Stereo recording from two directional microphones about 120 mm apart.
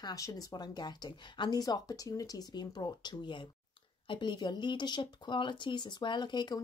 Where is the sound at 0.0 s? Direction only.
30° left (ahead or behind).